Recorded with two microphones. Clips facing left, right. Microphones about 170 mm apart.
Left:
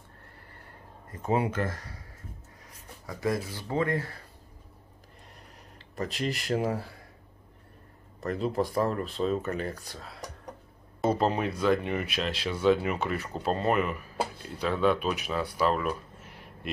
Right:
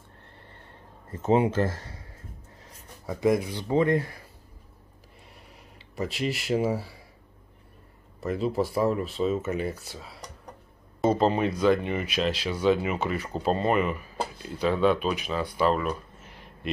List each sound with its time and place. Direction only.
1.1 s speech: 25° right (ahead or behind)
5.9 s speech: 5° right (ahead or behind)
8.2 s speech: 5° right (ahead or behind)